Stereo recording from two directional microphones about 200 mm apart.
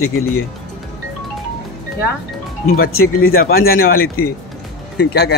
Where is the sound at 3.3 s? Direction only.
45° left (ahead or behind).